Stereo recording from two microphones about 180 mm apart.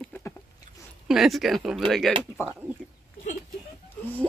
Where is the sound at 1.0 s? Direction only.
Centre (ahead or behind).